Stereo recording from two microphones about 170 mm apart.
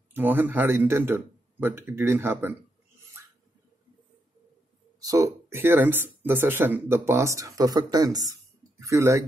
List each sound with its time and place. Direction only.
0.1 s speech: 10° right (ahead or behind)
5.0 s speech: 20° right (ahead or behind)